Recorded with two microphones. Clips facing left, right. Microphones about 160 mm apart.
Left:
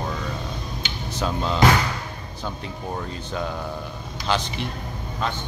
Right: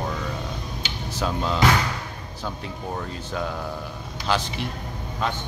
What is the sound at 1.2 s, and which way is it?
Speech, 5° right (ahead or behind).